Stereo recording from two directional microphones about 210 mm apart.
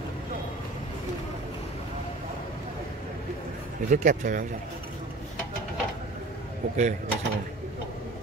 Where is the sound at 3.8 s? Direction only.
35° right (ahead or behind).